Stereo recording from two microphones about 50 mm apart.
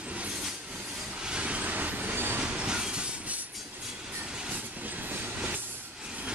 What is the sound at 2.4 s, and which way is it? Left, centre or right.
Train, right.